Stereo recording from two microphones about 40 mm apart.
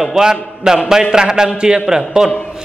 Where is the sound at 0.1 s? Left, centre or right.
Centre.